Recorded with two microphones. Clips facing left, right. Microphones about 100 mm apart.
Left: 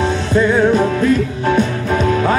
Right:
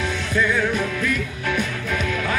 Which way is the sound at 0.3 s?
30° left (ahead or behind).